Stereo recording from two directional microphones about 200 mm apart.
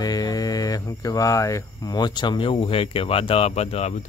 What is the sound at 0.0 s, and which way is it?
Speech, 20° left (ahead or behind).